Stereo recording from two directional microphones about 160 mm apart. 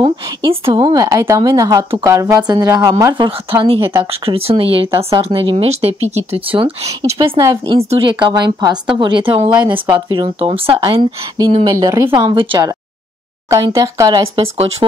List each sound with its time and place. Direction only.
0.0 s a woman's voice: 35° right (ahead or behind)
3.3 s a woman's voice: 35° right (ahead or behind); by 12.3 s 20° right (ahead or behind)
12.3 s speech: 30° right (ahead or behind)
13.5 s a woman's voice: 20° right (ahead or behind)
14.4 s speech: 35° right (ahead or behind)